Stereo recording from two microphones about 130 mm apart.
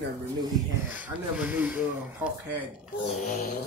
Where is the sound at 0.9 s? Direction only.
15° right (ahead or behind).